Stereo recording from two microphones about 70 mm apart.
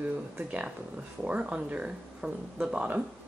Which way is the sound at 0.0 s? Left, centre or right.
Right.